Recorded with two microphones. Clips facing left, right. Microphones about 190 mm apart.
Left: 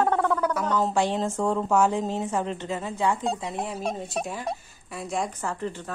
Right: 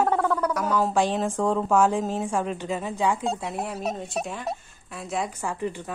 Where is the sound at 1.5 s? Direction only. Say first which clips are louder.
Right 1 dB; 15° left (ahead or behind).